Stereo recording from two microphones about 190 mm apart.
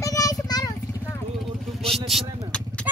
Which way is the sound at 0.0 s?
15° left (ahead or behind).